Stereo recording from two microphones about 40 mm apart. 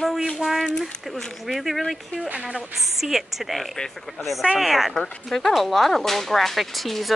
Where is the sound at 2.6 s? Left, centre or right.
Centre.